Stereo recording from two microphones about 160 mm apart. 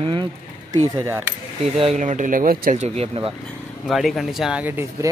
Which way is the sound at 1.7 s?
40° right (ahead or behind).